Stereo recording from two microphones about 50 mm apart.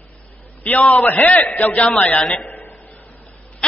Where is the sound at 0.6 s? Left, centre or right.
Left.